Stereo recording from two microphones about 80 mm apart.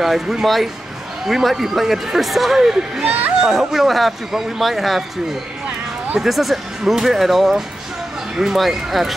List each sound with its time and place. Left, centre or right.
0.0 s a man's voice: centre
6.2 s a man's voice: centre